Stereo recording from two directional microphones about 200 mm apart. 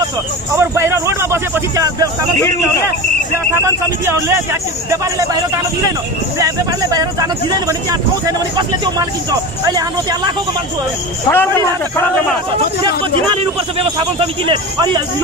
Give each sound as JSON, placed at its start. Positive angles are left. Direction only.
{"t": 0.6, "sound": "speech", "side_deg": -15}
{"t": 4.0, "sound": "speech", "side_deg": -10}
{"t": 6.4, "sound": "a man's voice", "side_deg": -15}
{"t": 11.2, "sound": "a man's voice", "side_deg": 10}
{"t": 13.3, "sound": "a man's voice", "side_deg": -25}